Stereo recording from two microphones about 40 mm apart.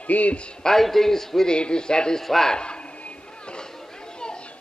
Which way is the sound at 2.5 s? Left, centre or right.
Left.